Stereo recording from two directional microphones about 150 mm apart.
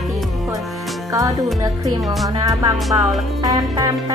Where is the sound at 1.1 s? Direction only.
25° right (ahead or behind).